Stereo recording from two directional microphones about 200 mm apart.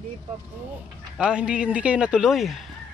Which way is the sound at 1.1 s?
5° right (ahead or behind).